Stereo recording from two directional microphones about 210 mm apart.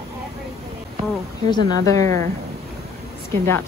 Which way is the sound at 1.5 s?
15° left (ahead or behind).